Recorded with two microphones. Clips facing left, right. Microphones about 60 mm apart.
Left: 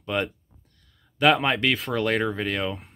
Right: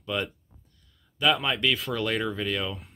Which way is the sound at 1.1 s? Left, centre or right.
Left.